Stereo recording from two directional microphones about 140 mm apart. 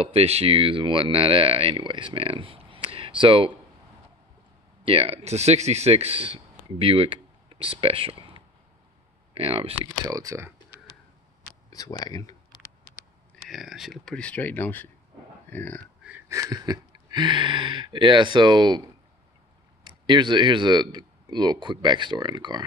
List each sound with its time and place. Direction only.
0.0 s speech: 45° right (ahead or behind)
2.9 s a sound: 40° right (ahead or behind)
4.8 s speech: 45° right (ahead or behind)
10.0 s speech: 25° right (ahead or behind)
11.7 s speech: 25° left (ahead or behind)
13.5 s speech: centre (ahead or behind); by 15.8 s 15° left (ahead or behind)
16.0 s wheeze: 10° right (ahead or behind)
16.3 s speech: 25° right (ahead or behind)
19.8 s speech: 35° right (ahead or behind)